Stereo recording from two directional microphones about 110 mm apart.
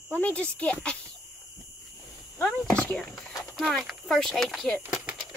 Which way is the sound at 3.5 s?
Centre (ahead or behind).